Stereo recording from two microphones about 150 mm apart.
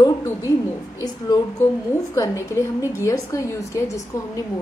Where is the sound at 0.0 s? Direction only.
20° left (ahead or behind).